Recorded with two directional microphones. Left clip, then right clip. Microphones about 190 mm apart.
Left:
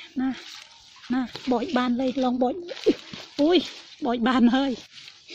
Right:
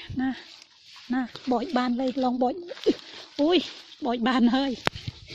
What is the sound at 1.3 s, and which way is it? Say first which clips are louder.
Speech: left 1 dB; 20° right (ahead or behind).